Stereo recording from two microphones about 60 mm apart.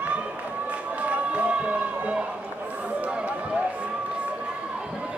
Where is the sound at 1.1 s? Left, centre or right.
Right.